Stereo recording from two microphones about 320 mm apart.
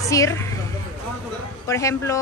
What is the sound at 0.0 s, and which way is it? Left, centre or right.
Speech, centre.